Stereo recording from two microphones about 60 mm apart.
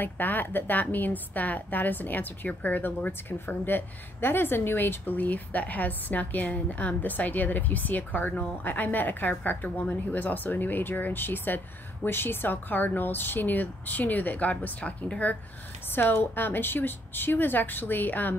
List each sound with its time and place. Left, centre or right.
0.0 s a woman's voice: left
15.9 s a woman's voice: left